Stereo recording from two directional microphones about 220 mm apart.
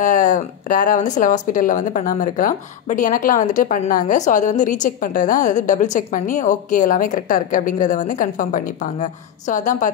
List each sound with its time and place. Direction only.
0.0 s a woman's voice: 35° left (ahead or behind)